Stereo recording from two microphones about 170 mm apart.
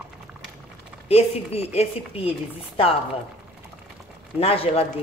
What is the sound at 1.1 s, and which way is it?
Speech, 35° left (ahead or behind).